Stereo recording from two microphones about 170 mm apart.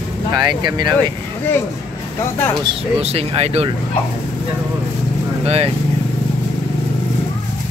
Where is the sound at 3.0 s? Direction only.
35° right (ahead or behind).